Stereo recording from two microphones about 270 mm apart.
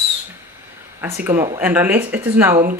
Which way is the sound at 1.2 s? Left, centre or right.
Centre.